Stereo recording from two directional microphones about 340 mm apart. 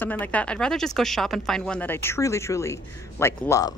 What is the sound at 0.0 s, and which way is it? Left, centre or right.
Speech, centre.